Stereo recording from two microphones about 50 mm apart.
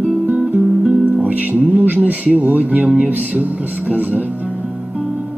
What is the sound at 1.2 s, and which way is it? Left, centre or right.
Speech, right.